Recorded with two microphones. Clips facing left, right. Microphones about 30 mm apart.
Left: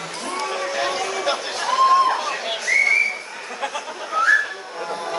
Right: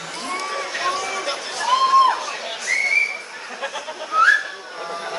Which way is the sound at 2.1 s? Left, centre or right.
Centre.